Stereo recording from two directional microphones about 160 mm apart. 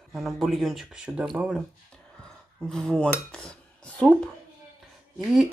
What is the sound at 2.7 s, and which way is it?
Speech, 5° left (ahead or behind).